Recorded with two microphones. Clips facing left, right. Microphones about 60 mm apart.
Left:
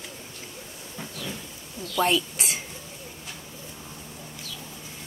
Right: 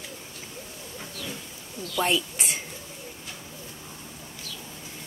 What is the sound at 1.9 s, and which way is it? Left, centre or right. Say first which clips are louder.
Speech: left 2 dB; centre.